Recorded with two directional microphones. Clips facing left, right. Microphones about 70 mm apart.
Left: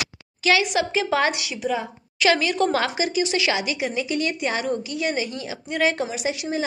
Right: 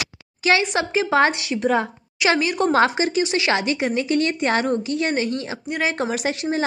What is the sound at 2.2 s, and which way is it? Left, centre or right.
Speech, right.